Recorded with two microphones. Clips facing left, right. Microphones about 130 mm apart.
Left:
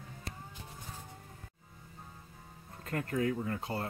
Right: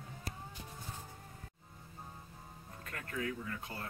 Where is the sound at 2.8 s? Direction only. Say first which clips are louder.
Left 8 dB; 30° left (ahead or behind).